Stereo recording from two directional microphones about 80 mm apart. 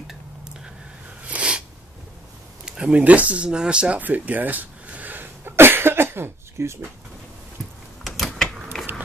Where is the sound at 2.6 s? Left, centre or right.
Centre; by 6.7 s right.